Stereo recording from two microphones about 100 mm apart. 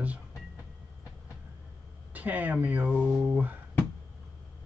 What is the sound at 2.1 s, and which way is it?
Speech, 15° right (ahead or behind).